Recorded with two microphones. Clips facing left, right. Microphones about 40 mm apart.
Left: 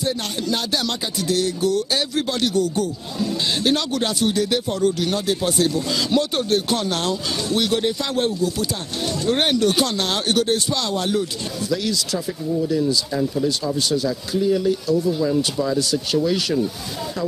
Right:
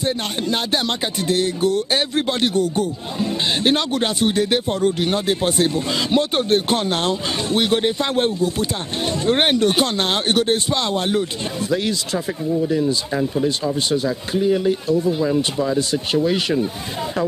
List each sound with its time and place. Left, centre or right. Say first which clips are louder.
0.0 s music: right 2 dB; right
13.7 s speech: right 1 dB; right